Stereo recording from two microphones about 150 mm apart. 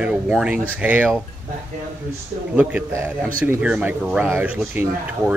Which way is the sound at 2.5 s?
10° right (ahead or behind).